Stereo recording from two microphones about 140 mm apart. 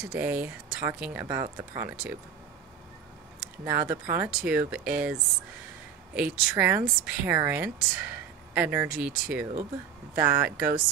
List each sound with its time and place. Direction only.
0.0 s speech: 10° right (ahead or behind)
3.6 s speech: 15° right (ahead or behind)
6.1 s speech: 10° right (ahead or behind)